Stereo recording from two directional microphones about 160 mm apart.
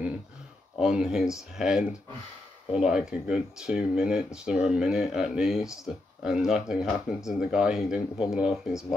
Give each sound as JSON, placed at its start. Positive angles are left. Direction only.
{"t": 0.7, "sound": "speech", "side_deg": -5}